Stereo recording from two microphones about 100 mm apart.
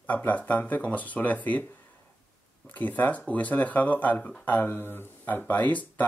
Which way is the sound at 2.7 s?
15° left (ahead or behind).